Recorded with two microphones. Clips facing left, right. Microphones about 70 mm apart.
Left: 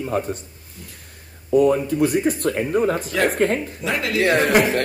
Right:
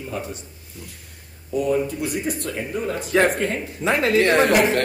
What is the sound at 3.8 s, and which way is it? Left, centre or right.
Speech, right.